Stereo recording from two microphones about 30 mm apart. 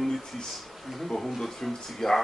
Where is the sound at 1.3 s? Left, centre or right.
Centre.